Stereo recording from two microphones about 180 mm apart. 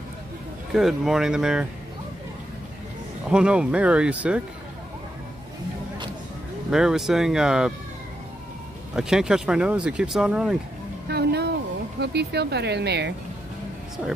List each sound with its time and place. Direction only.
0.7 s speech: 5° right (ahead or behind)
3.3 s speech: 5° right (ahead or behind)
6.7 s speech: 5° right (ahead or behind)
8.9 s speech: 5° right (ahead or behind)
11.1 s a sound: 65° right (ahead or behind)
12.0 s speech: 65° right (ahead or behind)